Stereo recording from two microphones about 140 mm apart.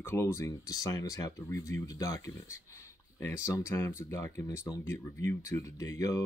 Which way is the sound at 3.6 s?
20° left (ahead or behind).